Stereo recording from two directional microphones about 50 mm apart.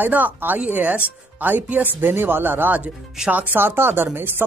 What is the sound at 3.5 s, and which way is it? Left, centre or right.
Speech, right.